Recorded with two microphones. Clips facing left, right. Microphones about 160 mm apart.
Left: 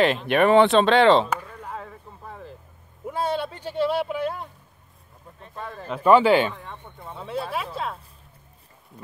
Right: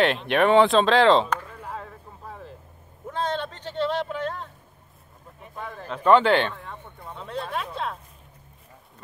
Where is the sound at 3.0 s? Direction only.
10° left (ahead or behind).